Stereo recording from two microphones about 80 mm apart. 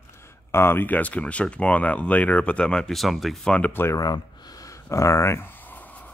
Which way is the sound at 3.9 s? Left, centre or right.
Left.